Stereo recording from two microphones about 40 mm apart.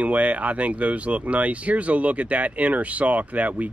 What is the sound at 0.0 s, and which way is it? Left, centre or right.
Speech, right.